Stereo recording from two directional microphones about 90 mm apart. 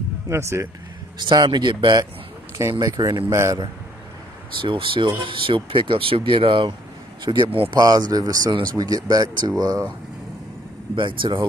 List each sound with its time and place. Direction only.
0.3 s speech: 30° right (ahead or behind)
1.1 s speech: 55° right (ahead or behind)
3.3 s speech: 35° right (ahead or behind)
4.6 s speech: 70° right (ahead or behind)
7.2 s speech: 55° right (ahead or behind)
11.0 s speech: 60° right (ahead or behind)